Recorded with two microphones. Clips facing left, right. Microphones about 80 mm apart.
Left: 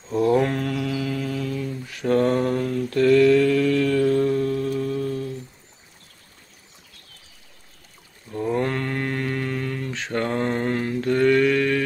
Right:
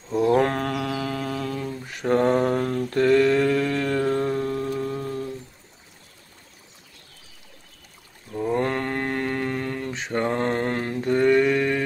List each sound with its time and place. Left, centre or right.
0.3 s a sound: right
2.0 s mantra: right
2.3 s mantra: right
2.9 s mantra: right
8.5 s mantra: right
9.9 s mantra: centre
10.4 s mantra: right
11.0 s a sound: right